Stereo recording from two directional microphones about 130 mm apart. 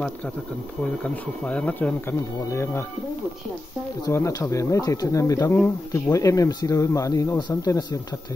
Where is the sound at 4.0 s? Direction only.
25° left (ahead or behind).